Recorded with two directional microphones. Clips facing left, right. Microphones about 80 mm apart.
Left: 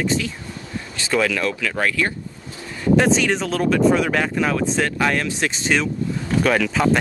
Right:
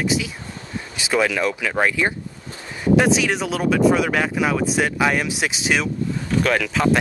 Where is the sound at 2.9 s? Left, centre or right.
Centre.